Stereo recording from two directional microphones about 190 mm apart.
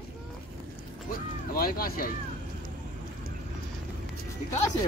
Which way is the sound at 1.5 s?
50° left (ahead or behind).